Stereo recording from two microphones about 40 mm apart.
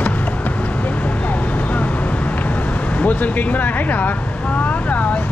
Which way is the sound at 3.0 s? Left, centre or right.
Left.